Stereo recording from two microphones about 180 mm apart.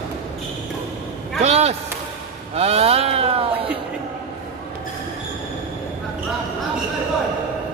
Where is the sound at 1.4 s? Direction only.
35° right (ahead or behind).